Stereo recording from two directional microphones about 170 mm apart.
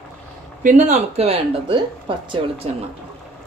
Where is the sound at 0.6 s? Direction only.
45° right (ahead or behind).